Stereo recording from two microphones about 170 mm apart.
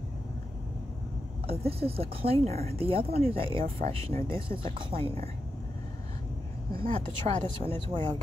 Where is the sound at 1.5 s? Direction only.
35° right (ahead or behind).